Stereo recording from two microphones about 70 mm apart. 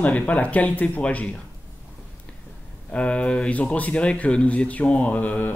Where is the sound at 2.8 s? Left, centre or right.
Centre.